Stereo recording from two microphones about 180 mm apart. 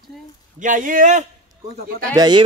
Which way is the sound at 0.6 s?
45° right (ahead or behind).